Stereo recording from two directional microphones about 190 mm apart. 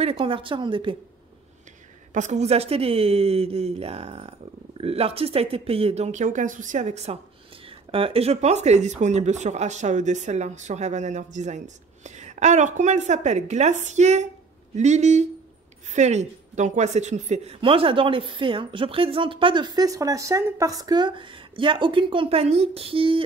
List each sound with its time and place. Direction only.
0.0 s a woman's voice: 25° right (ahead or behind)
2.1 s a woman's voice: 35° right (ahead or behind)